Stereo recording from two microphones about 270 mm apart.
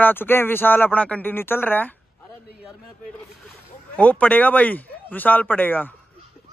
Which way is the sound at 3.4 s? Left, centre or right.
Centre.